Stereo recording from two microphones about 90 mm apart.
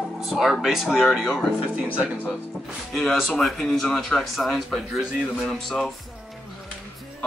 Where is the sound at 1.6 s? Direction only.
15° right (ahead or behind).